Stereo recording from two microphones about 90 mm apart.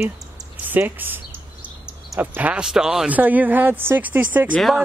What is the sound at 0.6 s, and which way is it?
Speech, 20° right (ahead or behind).